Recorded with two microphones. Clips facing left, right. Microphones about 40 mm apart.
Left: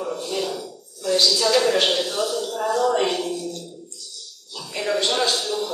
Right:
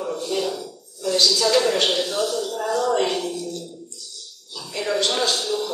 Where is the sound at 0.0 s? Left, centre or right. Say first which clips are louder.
Right 1 dB; centre.